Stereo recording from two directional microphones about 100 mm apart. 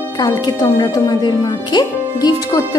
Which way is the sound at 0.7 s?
45° left (ahead or behind).